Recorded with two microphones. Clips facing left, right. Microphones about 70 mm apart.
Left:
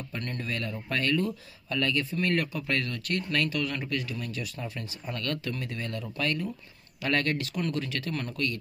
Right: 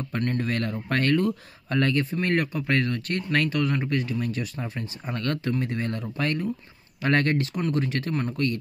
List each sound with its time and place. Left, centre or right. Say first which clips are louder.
0.4 s a sound: right 6 dB; right
1.8 s speech: right 4 dB; right
8.1 s speech: right 4 dB; right